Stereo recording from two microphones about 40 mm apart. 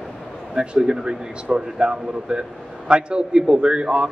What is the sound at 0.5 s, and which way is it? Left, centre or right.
A man's voice, centre.